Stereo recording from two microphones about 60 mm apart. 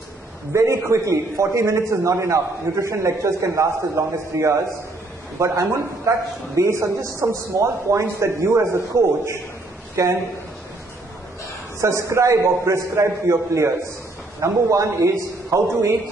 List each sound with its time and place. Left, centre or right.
0.5 s a man's voice: right
11.8 s a man's voice: right